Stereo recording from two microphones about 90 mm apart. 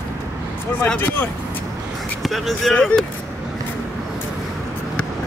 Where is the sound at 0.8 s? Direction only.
20° left (ahead or behind).